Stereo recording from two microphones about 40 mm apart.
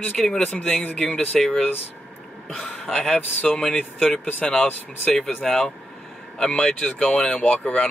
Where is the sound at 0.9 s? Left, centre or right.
Centre.